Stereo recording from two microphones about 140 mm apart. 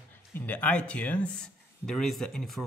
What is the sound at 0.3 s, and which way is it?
Speech, 10° left (ahead or behind).